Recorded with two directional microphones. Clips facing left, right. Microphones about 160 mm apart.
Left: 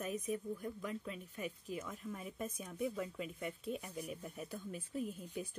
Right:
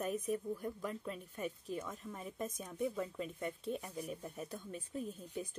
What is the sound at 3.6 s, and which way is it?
Speech, 5° left (ahead or behind).